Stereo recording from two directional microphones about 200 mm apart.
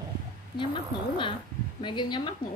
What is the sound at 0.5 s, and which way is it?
Speech, 25° left (ahead or behind).